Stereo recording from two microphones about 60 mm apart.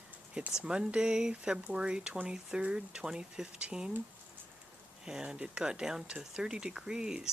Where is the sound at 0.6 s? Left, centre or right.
Centre.